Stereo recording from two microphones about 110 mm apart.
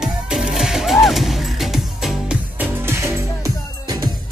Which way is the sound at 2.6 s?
20° right (ahead or behind).